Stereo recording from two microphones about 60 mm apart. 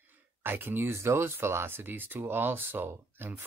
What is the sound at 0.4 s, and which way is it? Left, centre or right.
Speech, right.